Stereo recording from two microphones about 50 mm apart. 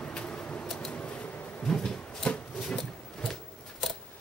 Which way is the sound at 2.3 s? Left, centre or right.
Left.